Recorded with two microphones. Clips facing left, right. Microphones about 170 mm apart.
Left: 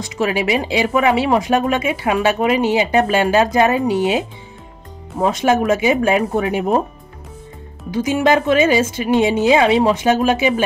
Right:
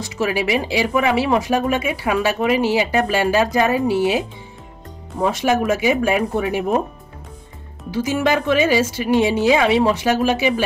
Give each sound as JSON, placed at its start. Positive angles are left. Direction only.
{"t": 0.0, "sound": "speech", "side_deg": 20}
{"t": 5.2, "sound": "speech", "side_deg": 20}
{"t": 7.9, "sound": "speech", "side_deg": 20}